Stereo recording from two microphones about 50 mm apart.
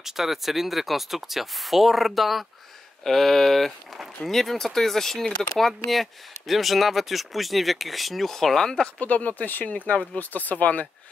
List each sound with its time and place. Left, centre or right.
0.0 s speech: centre
9.0 s speech: left